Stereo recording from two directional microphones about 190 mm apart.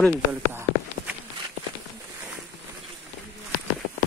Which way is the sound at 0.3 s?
10° right (ahead or behind).